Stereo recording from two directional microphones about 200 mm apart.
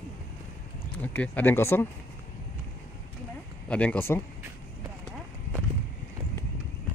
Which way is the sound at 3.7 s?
5° left (ahead or behind).